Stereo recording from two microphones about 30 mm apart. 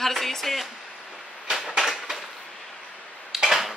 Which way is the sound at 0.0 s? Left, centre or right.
Centre.